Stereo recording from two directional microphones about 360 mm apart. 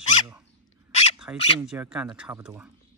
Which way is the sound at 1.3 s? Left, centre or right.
Centre.